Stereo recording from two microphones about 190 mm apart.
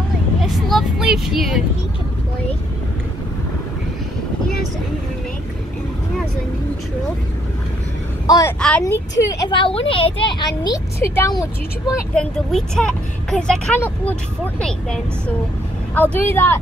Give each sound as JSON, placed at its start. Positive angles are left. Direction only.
{"t": 0.4, "sound": "speech", "side_deg": 0}
{"t": 8.3, "sound": "speech", "side_deg": 20}
{"t": 8.5, "sound": "speech", "side_deg": 5}
{"t": 9.2, "sound": "speech", "side_deg": 20}
{"t": 12.1, "sound": "speech", "side_deg": 5}